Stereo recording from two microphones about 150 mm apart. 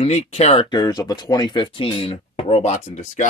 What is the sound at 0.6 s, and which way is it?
Speech, 30° left (ahead or behind).